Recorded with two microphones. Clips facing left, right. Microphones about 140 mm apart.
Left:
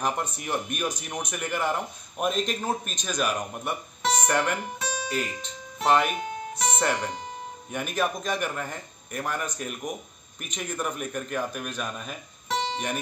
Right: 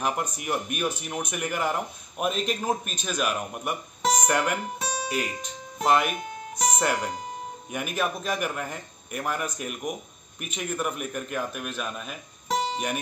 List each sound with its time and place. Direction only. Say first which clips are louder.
0.0 s a man's voice: even; 10° right (ahead or behind)
4.7 s music: right 1 dB; 30° right (ahead or behind)
5.1 s a man's voice: right 1 dB; 5° right (ahead or behind)
6.5 s music: right 3 dB; 35° right (ahead or behind)
6.8 s a man's voice: even; 5° right (ahead or behind)